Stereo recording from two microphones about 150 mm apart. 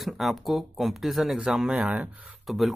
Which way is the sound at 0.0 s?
Centre (ahead or behind).